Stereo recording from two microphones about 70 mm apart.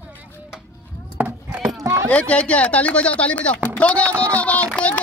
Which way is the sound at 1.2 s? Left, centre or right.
Right.